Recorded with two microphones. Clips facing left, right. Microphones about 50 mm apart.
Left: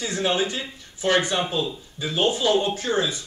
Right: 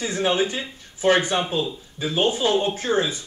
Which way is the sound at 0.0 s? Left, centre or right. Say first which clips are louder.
Right 2 dB; right.